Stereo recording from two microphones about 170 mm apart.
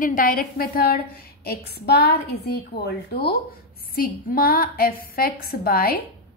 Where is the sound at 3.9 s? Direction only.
60° left (ahead or behind).